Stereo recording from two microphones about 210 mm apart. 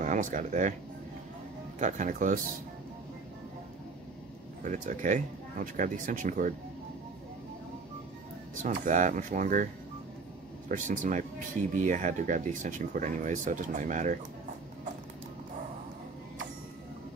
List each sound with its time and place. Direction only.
0.0 s speech: 35° right (ahead or behind)
1.8 s speech: 35° right (ahead or behind)
4.6 s speech: 40° right (ahead or behind)
8.6 s speech: 40° right (ahead or behind)
10.7 s speech: 35° right (ahead or behind)